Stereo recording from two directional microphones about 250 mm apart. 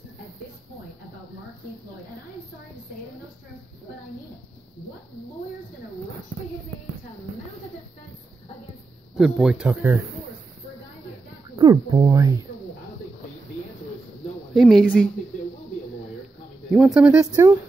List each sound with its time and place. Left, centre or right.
9.1 s speech: centre
11.5 s speech: centre
14.5 s speech: centre
16.7 s speech: centre